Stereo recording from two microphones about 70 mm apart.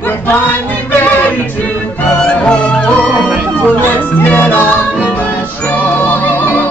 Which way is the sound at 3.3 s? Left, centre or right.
Centre.